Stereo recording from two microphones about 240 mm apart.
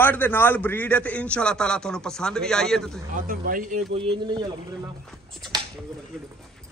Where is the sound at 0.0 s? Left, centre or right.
Centre.